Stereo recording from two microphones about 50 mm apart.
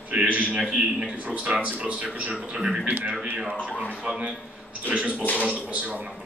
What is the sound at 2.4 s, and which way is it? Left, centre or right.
Speech, centre.